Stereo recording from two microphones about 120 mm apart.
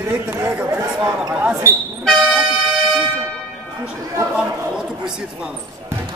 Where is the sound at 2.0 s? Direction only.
5° left (ahead or behind).